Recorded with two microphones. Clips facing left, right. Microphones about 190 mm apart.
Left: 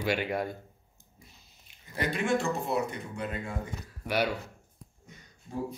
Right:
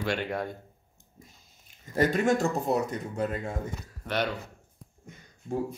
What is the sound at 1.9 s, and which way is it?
Speech, 45° right (ahead or behind).